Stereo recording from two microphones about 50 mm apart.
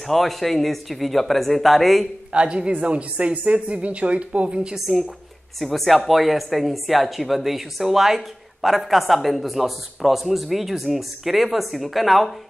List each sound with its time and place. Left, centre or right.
0.0 s speech: centre
2.3 s a woman's voice: right
4.7 s speech: centre